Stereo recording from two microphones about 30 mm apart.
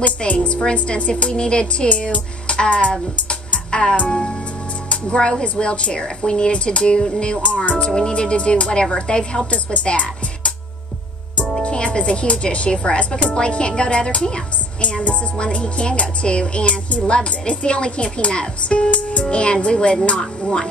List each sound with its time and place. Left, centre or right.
0.0 s a woman's voice: left
5.1 s speech: left
5.4 s speech: left
9.5 s speech: left
11.6 s music: left
12.0 s speech: left
14.8 s a woman's voice: left
15.3 s speech: left
19.3 s speech: left